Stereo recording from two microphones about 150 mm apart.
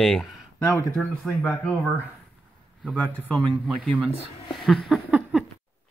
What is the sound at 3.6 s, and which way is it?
Speech, centre (ahead or behind).